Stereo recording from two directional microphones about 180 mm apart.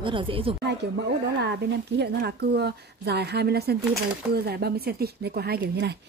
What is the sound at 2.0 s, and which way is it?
A woman's voice, 65° right (ahead or behind).